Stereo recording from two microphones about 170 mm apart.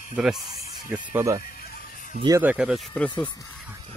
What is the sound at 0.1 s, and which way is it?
Speech, 5° right (ahead or behind).